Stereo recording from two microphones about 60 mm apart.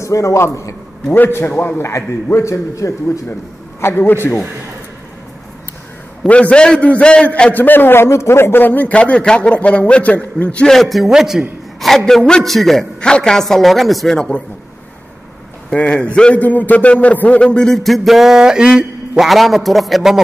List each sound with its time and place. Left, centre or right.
0.0 s a man's voice: left
1.1 s a man's voice: left
2.2 s a man's voice: left
2.5 s a man's voice: left
3.8 s a man's voice: left
6.2 s a man's voice: left
7.5 s a man's voice: left
10.7 s a man's voice: centre
12.1 s a man's voice: centre
13.0 s a man's voice: centre
14.1 s a man's voice: centre
15.7 s a man's voice: centre
19.2 s a man's voice: centre